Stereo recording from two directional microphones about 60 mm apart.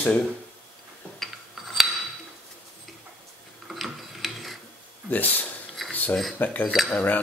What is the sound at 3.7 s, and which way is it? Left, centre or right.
Mechanisms, centre.